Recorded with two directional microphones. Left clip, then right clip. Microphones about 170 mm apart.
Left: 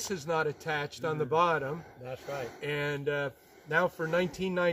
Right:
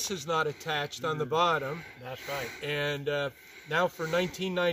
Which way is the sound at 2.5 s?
Centre (ahead or behind).